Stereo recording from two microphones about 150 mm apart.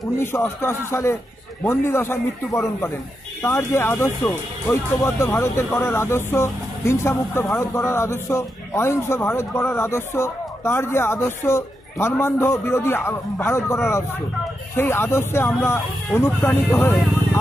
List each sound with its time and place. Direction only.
0.2 s speech: 15° left (ahead or behind)